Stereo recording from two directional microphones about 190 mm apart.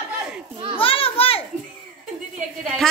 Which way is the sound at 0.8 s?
30° left (ahead or behind).